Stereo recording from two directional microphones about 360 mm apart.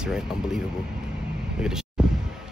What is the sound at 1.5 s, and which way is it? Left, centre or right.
Vehicle, centre.